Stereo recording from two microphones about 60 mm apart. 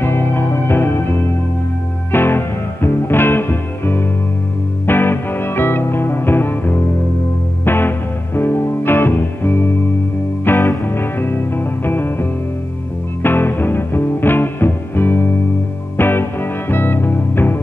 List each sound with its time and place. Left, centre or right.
0.0 s music: left